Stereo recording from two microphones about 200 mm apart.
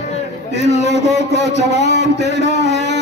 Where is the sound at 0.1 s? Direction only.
35° left (ahead or behind).